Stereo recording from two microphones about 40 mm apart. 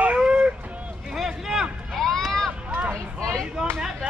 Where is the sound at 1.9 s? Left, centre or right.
Centre.